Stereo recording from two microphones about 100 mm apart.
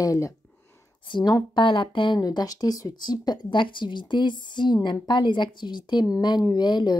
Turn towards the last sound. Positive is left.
turn(degrees=50)  # may be behind; listen again after turning